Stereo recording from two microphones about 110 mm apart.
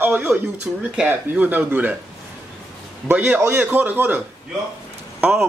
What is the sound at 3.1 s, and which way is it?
Speech, 20° right (ahead or behind).